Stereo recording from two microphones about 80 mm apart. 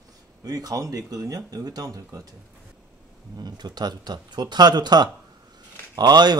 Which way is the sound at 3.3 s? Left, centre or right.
Right.